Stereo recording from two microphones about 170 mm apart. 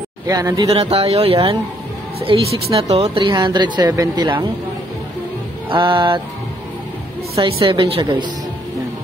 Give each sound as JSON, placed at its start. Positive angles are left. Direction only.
{"t": 0.3, "sound": "a woman's voice", "side_deg": -20}
{"t": 0.7, "sound": "a woman's voice", "side_deg": -35}
{"t": 5.7, "sound": "a woman's voice", "side_deg": -30}
{"t": 7.4, "sound": "a woman's voice", "side_deg": -30}